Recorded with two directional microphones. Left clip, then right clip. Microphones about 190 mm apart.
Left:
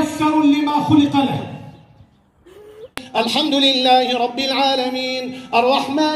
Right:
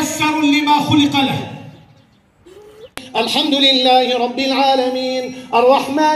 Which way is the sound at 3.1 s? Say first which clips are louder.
Right 2 dB; 35° left (ahead or behind).